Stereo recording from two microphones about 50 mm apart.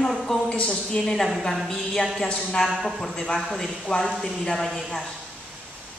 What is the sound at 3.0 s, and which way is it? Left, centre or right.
A man's voice, centre.